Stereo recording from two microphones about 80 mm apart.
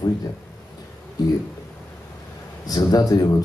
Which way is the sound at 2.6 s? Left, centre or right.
Left.